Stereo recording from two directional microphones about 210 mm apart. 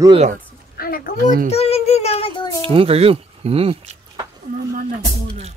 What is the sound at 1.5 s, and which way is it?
A child's voice, 30° left (ahead or behind).